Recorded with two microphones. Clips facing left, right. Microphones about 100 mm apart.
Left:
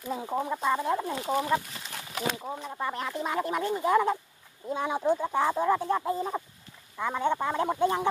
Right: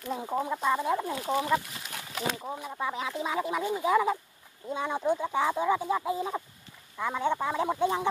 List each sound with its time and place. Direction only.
0.0 s speech: centre (ahead or behind)